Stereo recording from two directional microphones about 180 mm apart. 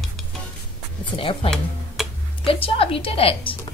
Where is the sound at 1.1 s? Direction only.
30° left (ahead or behind).